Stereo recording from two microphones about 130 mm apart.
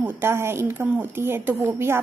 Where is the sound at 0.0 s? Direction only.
20° right (ahead or behind).